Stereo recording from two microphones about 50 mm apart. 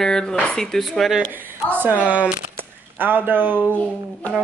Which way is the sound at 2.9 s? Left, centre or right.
Right.